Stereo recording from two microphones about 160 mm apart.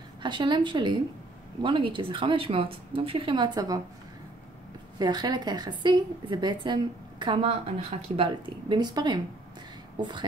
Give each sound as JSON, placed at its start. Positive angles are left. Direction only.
{"t": 0.2, "sound": "a woman's voice", "side_deg": -30}
{"t": 4.9, "sound": "a woman's voice", "side_deg": -25}
{"t": 8.2, "sound": "a woman's voice", "side_deg": -30}